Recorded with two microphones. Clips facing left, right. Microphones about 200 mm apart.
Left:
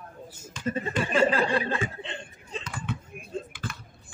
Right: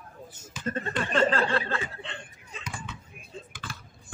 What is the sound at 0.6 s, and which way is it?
Speech, 10° left (ahead or behind).